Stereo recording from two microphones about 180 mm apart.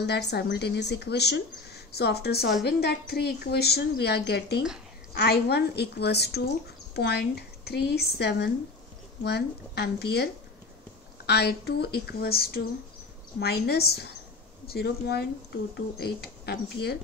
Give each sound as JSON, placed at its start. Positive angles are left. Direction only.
{"t": 0.0, "sound": "a woman's voice", "side_deg": 70}